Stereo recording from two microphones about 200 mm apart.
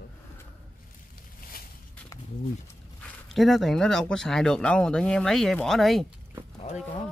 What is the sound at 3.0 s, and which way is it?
Speech, centre (ahead or behind).